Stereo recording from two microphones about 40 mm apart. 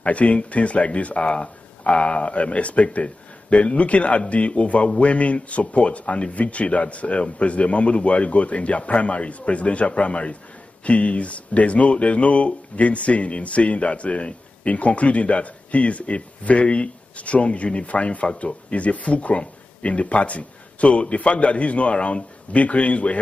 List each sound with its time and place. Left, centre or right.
0.0 s speech: left